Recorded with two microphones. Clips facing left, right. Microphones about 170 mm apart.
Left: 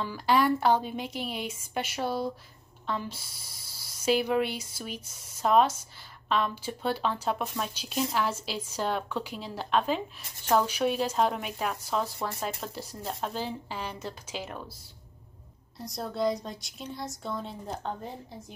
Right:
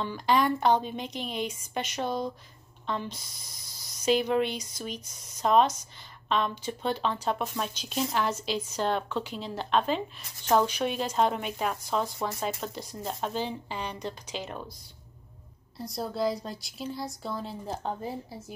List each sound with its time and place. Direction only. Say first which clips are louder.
0.0 s a woman's voice: even; 5° left (ahead or behind)
15.8 s speech: even; centre (ahead or behind)